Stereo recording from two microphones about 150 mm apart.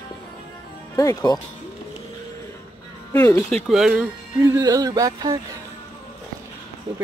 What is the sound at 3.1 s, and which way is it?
Speech, 20° left (ahead or behind).